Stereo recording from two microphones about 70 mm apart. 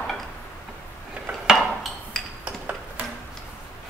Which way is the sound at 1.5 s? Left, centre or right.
Centre.